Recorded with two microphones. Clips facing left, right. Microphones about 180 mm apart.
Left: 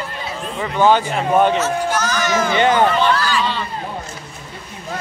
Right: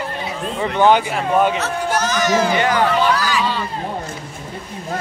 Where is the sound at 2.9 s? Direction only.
10° right (ahead or behind).